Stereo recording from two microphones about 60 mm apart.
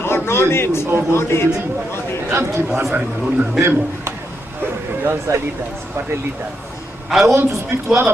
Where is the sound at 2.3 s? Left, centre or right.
Right.